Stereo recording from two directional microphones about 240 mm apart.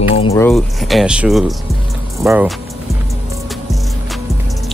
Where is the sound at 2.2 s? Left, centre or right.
Centre.